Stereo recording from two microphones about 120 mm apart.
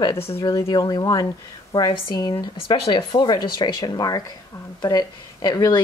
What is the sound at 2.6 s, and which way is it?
Speech, 45° left (ahead or behind).